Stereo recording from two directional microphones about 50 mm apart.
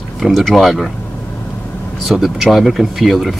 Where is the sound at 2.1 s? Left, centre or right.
Centre.